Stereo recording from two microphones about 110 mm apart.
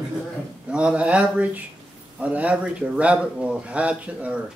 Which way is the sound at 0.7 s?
10° right (ahead or behind).